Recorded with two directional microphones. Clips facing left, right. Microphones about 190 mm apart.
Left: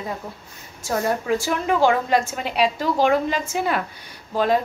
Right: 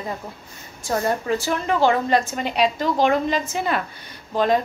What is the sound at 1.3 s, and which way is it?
A woman's voice, 10° left (ahead or behind).